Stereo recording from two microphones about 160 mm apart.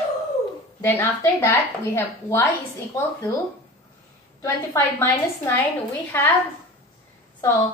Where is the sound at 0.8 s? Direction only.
15° left (ahead or behind).